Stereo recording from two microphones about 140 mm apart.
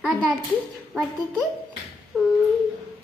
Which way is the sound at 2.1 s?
5° left (ahead or behind).